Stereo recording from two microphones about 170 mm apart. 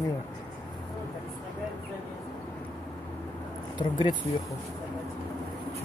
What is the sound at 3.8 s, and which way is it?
Speech, 25° left (ahead or behind).